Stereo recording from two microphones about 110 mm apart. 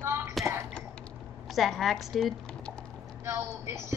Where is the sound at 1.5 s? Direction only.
Centre (ahead or behind).